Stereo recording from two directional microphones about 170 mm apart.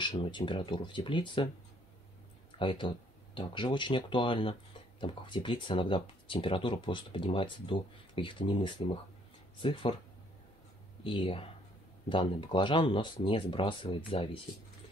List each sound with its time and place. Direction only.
0.1 s speech: 30° left (ahead or behind)
2.6 s speech: 30° left (ahead or behind)
11.1 s speech: 30° left (ahead or behind)